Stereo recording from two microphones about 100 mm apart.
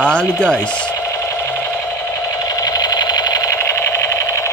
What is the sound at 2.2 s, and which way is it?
Sewing machine, 40° left (ahead or behind).